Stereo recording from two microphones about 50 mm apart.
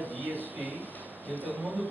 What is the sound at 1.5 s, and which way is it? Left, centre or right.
Speech, right.